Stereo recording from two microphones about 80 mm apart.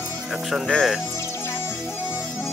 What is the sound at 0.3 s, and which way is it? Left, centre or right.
Music, centre.